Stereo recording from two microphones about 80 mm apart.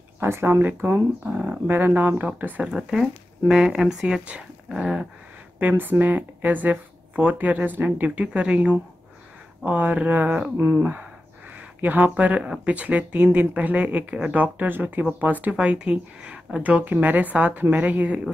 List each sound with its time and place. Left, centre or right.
0.2 s speech: right
1.2 s speech: centre
2.7 s speech: centre
5.6 s speech: right